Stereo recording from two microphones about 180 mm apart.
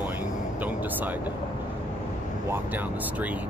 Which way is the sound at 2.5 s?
10° right (ahead or behind).